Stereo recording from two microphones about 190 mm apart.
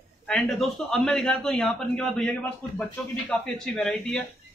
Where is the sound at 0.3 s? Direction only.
Centre (ahead or behind).